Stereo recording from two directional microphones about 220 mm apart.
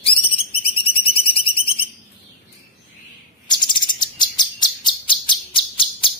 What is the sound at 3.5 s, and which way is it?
Chirp, 20° left (ahead or behind).